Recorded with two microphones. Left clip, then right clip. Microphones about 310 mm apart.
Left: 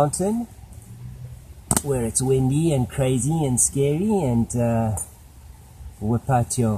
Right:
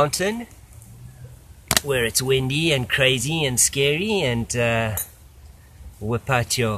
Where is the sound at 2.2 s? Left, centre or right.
Centre.